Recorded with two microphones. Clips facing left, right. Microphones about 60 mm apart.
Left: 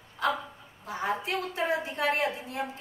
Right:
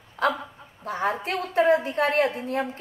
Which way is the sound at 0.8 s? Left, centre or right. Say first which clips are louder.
Right 5 dB; right.